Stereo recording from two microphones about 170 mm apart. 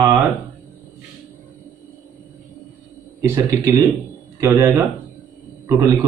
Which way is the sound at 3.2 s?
15° right (ahead or behind).